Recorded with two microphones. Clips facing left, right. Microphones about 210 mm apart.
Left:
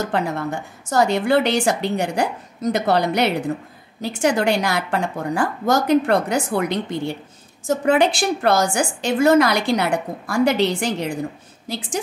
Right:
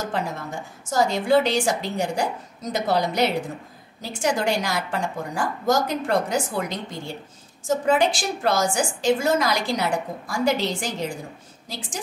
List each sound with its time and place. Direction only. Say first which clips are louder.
0.1 s a woman's voice: left 6 dB; 65° left (ahead or behind)